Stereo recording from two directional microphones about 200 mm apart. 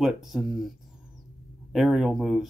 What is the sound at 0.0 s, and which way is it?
Speech, centre (ahead or behind).